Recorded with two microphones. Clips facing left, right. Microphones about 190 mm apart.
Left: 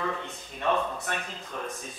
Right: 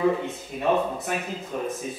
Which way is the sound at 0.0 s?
10° right (ahead or behind).